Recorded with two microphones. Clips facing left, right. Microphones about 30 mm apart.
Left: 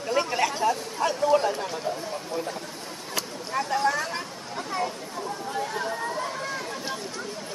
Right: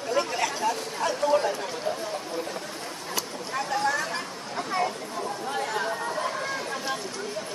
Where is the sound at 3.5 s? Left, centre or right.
Centre.